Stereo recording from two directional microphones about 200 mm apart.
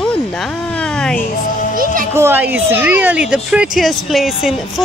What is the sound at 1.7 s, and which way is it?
Music, 45° right (ahead or behind).